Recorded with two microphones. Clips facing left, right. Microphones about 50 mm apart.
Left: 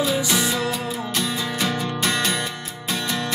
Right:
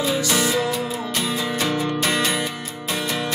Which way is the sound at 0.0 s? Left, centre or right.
Centre.